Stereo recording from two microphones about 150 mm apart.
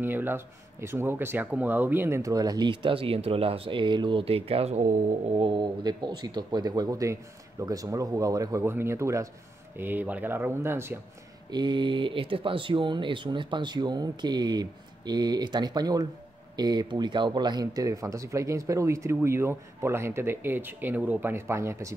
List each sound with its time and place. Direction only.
0.0 s speech: 15° right (ahead or behind); by 4.8 s 45° right (ahead or behind)
5.4 s speech: 30° right (ahead or behind); by 11.0 s 15° right (ahead or behind)
11.5 s speech: 30° right (ahead or behind)